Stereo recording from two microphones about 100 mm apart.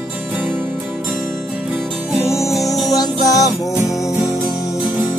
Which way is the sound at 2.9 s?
35° left (ahead or behind).